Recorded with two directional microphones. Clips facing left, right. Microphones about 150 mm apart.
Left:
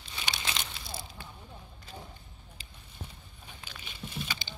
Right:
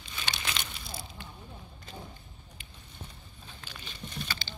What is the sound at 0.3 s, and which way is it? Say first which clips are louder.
Crumpling: even; 25° left (ahead or behind).